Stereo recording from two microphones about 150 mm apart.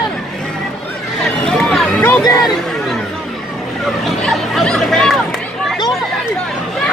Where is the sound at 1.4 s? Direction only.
5° left (ahead or behind).